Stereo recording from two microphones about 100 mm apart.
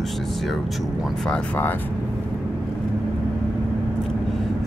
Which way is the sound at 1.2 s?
15° left (ahead or behind).